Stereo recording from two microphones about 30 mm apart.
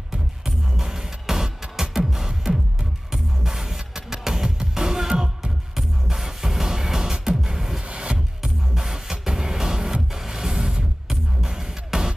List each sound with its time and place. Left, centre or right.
0.7 s music: centre
7.9 s music: right
8.4 s music: centre